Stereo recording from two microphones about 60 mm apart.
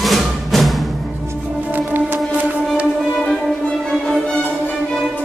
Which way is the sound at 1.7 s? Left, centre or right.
Right.